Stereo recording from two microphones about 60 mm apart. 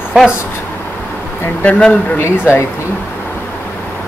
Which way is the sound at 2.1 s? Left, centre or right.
Left.